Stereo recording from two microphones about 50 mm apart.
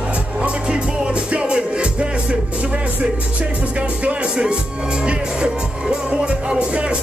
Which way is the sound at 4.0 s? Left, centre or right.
Right.